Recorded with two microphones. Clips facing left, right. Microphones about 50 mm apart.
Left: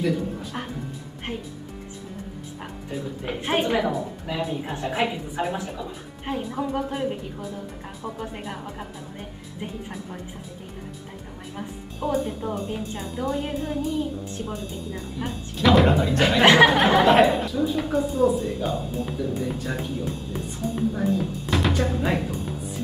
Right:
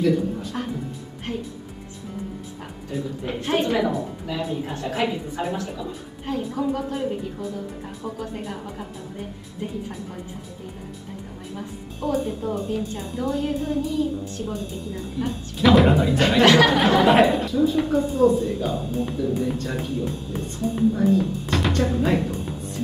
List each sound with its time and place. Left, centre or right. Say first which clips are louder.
0.0 s a woman's voice: right 4 dB; centre
2.9 s a woman's voice: right 2 dB; centre
3.4 s a woman's voice: right 1 dB; centre
3.7 s a woman's voice: right 1 dB; centre
6.5 s a woman's voice: right 2 dB; left
8.5 s a woman's voice: right 1 dB; centre
12.1 s a woman's voice: right 1 dB; centre
12.6 s a woman's voice: right 3 dB; centre
13.0 s a woman's voice: right 1 dB; centre
13.3 s a woman's voice: right 4 dB; centre
14.4 s a woman's voice: right 2 dB; centre
16.4 s a woman's voice: left 2 dB; left
16.7 s a woman's voice: even; centre